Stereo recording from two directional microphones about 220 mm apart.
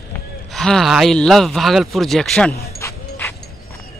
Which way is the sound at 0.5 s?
Centre (ahead or behind).